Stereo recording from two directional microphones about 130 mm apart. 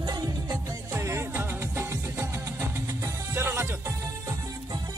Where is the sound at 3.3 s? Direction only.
20° right (ahead or behind).